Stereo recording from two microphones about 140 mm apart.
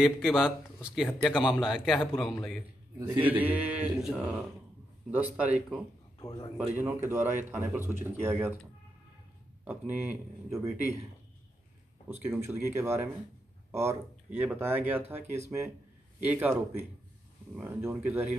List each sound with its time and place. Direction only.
0.0 s speech: centre (ahead or behind)
3.2 s speech: 10° right (ahead or behind)
6.1 s a man's voice: 35° left (ahead or behind)
6.7 s speech: 15° right (ahead or behind)
9.7 s speech: 15° right (ahead or behind)
12.3 s speech: 15° right (ahead or behind)